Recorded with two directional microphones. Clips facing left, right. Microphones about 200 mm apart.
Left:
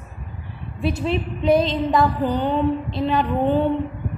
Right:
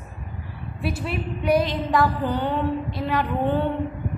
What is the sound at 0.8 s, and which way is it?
A woman's voice, 20° left (ahead or behind).